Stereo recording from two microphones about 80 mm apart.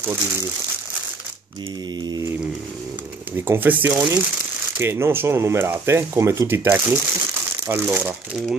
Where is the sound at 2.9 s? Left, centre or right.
Right.